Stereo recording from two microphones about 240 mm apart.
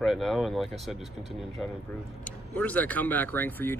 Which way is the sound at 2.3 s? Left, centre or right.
Centre.